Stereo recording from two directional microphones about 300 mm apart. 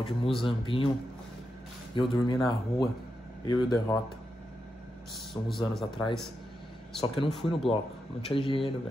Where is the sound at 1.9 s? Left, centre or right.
Centre.